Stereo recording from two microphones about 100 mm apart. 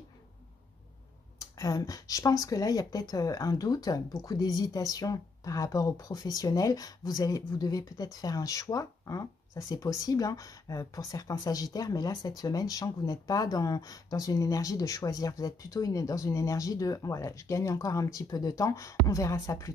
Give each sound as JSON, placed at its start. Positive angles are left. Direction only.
{"t": 1.6, "sound": "speech", "side_deg": 35}